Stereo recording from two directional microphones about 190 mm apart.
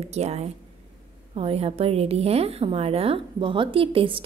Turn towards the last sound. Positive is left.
turn(degrees=-30)  # may be behind; listen again after turning